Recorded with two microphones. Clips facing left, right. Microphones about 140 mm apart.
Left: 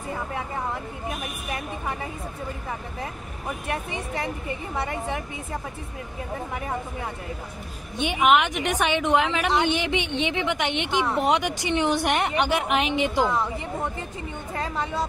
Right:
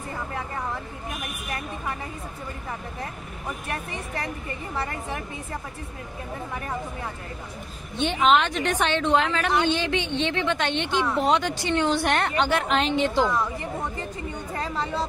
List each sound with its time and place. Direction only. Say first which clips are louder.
3.6 s a woman's voice: left 5 dB; 15° left (ahead or behind)
8.0 s a woman's voice: even; 10° left (ahead or behind)